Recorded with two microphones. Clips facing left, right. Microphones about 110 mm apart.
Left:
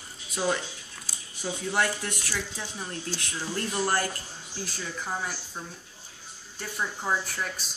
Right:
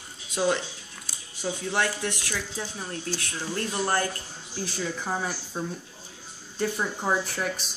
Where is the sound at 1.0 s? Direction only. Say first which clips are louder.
Right 3 dB; 10° left (ahead or behind).